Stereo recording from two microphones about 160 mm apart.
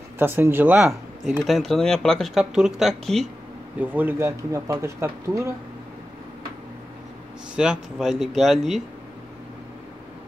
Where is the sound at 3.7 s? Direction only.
10° right (ahead or behind).